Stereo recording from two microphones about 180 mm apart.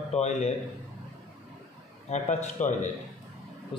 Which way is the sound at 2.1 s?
40° left (ahead or behind).